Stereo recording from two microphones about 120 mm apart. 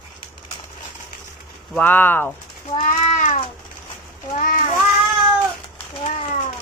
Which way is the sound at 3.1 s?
90° left.